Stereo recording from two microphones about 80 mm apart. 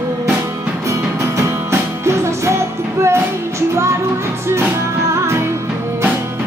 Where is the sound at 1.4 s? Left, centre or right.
Right.